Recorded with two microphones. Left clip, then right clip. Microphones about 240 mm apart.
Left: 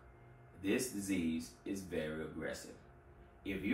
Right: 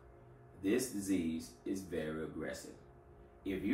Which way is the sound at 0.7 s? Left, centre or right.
Right.